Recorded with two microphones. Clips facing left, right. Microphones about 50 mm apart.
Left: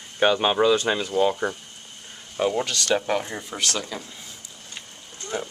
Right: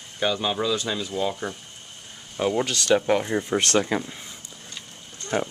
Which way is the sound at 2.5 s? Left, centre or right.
Centre.